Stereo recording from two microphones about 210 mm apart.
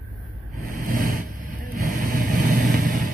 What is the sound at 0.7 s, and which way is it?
Vehicle, 45° right (ahead or behind).